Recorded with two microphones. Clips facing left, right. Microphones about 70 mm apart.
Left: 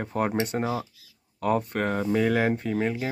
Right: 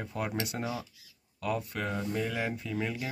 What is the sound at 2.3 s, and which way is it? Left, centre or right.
Speech, left.